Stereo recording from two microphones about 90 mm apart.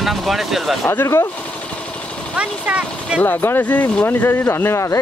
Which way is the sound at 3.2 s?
20° left (ahead or behind).